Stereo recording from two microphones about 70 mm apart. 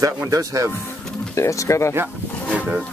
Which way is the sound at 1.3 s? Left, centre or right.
Left.